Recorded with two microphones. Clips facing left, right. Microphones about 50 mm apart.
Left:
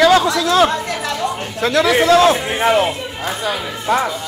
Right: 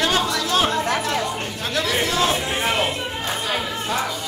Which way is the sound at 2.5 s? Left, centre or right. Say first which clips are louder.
Left 7 dB; left.